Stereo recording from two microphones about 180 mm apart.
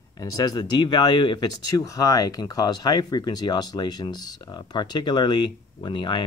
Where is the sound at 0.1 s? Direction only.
20° left (ahead or behind).